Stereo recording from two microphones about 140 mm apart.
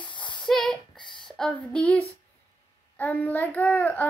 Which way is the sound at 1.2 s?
5° left (ahead or behind).